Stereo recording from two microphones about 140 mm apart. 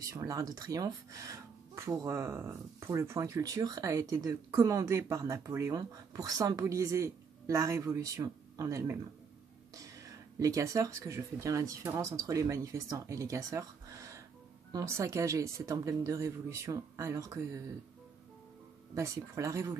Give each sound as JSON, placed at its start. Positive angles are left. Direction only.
{"t": 0.0, "sound": "speech", "side_deg": -25}
{"t": 18.9, "sound": "speech", "side_deg": -20}